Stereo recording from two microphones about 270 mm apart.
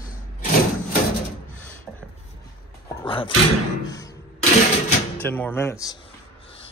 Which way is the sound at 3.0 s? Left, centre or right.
Centre.